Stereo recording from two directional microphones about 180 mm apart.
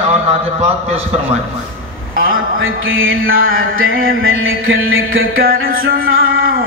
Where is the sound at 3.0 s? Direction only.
90° right.